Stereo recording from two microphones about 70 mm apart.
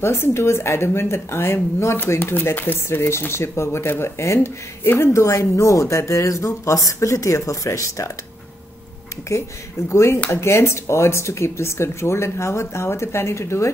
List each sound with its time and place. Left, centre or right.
0.0 s a woman's voice: left
9.3 s a woman's voice: left